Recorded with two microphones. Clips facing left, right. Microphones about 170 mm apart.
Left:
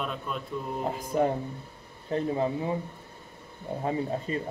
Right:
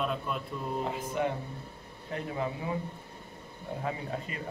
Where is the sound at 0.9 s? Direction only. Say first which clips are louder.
Left 8 dB; 40° left (ahead or behind).